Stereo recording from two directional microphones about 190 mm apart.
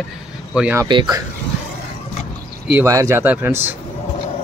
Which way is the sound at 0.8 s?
20° right (ahead or behind).